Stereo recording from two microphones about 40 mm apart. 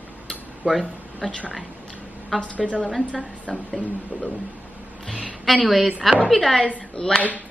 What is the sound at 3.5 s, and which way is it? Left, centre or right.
Speech, centre.